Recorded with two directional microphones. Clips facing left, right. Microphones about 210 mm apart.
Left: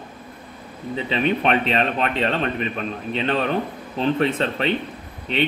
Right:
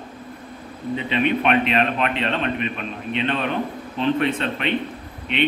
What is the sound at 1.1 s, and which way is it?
Speech, 35° left (ahead or behind).